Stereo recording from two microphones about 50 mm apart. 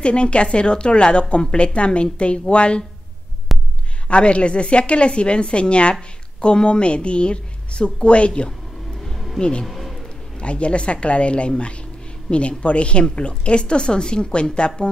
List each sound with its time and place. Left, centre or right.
0.0 s a woman's voice: left
3.5 s heart sounds: centre
4.1 s a woman's voice: left
9.0 s music: centre
9.4 s speech: centre
9.7 s a sound: centre
10.0 s a woman's voice: left